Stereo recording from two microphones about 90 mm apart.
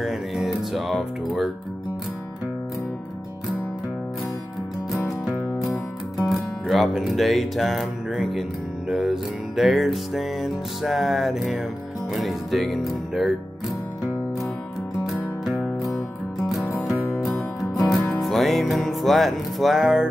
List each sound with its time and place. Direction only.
0.0 s speech: 5° right (ahead or behind)
4.9 s music: centre (ahead or behind)
5.6 s speech: centre (ahead or behind)
15.0 s music: centre (ahead or behind)